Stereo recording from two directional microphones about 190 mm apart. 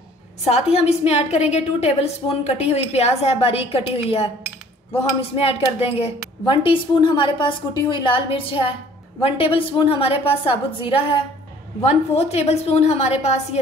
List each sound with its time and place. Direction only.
0.4 s a woman's voice: 35° left (ahead or behind)
5.3 s a woman's voice: 30° left (ahead or behind)